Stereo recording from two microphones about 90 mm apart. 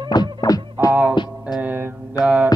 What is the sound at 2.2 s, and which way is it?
Mantra, 15° right (ahead or behind).